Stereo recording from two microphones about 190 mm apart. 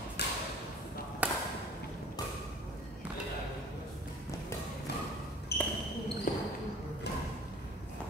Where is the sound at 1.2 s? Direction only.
10° right (ahead or behind).